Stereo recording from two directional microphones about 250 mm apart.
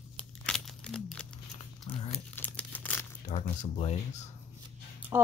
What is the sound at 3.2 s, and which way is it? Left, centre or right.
Speech, left.